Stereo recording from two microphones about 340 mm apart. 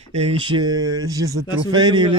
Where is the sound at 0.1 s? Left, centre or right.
Centre.